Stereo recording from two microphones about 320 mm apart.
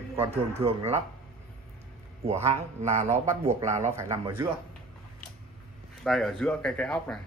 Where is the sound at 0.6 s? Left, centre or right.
Centre.